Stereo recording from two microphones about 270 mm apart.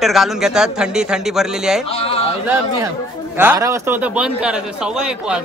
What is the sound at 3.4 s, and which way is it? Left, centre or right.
A man's voice, centre.